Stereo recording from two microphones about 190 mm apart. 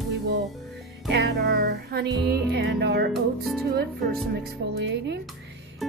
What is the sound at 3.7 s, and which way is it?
A woman's voice, 55° right (ahead or behind).